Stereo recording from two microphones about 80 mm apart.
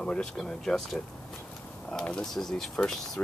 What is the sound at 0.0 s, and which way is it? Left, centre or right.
Speech, centre.